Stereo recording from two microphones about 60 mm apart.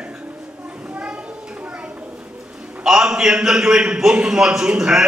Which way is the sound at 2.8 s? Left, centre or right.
Centre.